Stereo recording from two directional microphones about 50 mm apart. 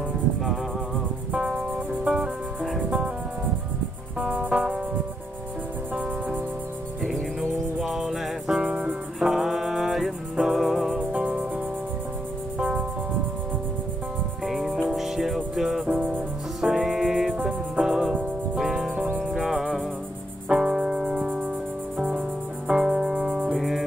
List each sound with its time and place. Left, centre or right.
1.3 s music: centre
4.3 s music: right
7.1 s music: centre
8.5 s music: right
9.2 s music: centre
11.0 s music: right
12.5 s music: centre
14.4 s music: centre
20.4 s music: centre
21.9 s cricket: right
22.7 s music: centre
23.5 s music: centre